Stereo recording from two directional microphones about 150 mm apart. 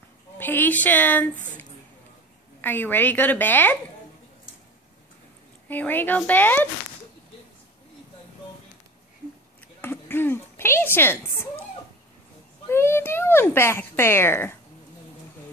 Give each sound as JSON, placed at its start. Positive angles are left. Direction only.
{"t": 0.4, "sound": "a child's voice", "side_deg": 15}
{"t": 2.6, "sound": "a child's voice", "side_deg": 15}
{"t": 5.7, "sound": "a child's voice", "side_deg": 10}
{"t": 9.8, "sound": "speech", "side_deg": 15}
{"t": 12.6, "sound": "a child's voice", "side_deg": 15}